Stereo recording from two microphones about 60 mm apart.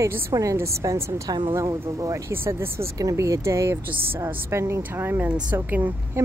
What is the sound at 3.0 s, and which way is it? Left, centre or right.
A woman's voice, right.